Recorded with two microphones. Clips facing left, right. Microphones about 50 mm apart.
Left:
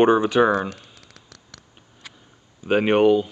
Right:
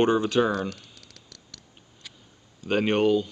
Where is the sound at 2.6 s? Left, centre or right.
Centre.